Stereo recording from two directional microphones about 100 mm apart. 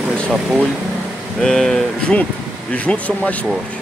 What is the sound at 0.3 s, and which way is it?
Speech, 10° right (ahead or behind).